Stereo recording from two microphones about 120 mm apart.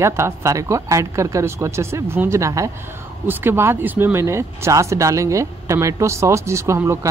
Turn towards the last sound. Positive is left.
turn(degrees=-25)  # may be behind; listen again after turning